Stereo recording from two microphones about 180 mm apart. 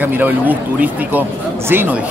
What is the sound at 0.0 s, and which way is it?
Speech, 10° right (ahead or behind).